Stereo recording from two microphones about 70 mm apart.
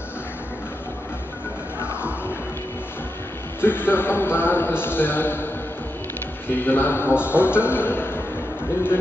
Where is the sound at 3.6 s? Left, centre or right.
Left.